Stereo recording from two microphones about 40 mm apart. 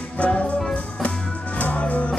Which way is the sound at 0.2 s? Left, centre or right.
Left.